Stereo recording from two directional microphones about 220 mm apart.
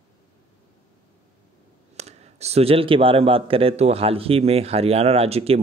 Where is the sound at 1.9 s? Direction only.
30° right (ahead or behind).